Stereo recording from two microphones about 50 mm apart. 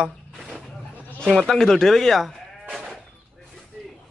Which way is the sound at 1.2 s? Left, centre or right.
Centre.